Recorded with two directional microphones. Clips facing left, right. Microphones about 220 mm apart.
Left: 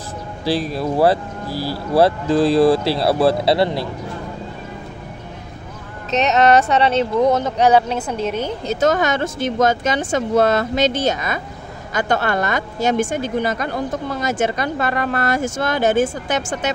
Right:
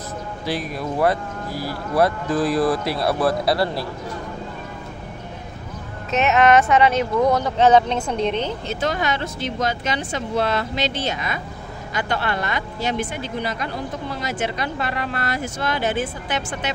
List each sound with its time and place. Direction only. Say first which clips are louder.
0.5 s speech: left 6 dB; 30° left (ahead or behind)
6.3 s speech: left 1 dB; 35° left (ahead or behind); by 8.5 s 5° left (ahead or behind)
8.6 s speech: left 6 dB; 45° left (ahead or behind)